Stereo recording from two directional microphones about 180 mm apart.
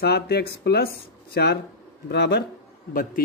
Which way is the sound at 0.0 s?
65° left (ahead or behind).